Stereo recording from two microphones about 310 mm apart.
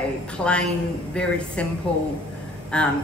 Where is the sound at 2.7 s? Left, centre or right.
Centre.